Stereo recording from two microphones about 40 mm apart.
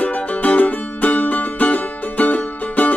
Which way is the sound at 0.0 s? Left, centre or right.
Left.